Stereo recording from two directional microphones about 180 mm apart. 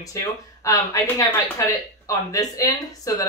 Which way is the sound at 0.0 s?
20° left (ahead or behind).